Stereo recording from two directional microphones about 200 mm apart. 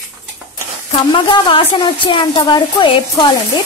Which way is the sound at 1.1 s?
25° left (ahead or behind).